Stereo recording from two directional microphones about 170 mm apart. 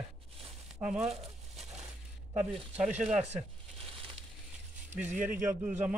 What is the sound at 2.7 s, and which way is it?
Speech, 5° right (ahead or behind).